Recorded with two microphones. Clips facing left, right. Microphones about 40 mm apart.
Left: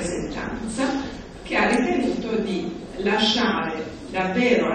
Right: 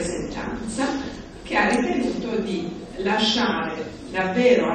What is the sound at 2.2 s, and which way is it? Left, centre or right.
A woman's voice, centre.